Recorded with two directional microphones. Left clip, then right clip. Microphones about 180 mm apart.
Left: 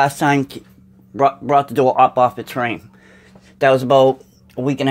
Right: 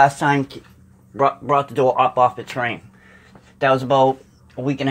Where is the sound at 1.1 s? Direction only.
50° left (ahead or behind).